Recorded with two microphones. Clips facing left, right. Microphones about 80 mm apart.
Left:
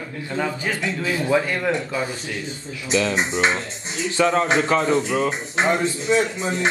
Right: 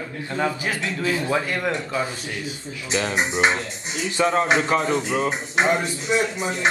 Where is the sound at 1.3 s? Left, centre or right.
Centre.